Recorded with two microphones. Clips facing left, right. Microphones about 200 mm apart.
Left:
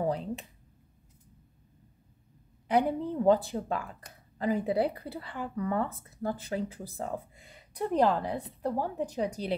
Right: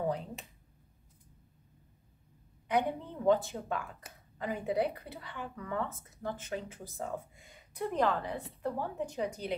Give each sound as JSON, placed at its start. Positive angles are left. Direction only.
{"t": 2.7, "sound": "speech", "side_deg": 35}